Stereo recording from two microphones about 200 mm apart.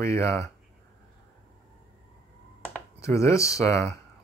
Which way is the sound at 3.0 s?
15° left (ahead or behind).